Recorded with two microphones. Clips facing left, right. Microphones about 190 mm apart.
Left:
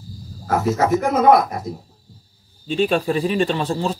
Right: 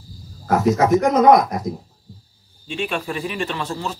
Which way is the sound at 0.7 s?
15° right (ahead or behind).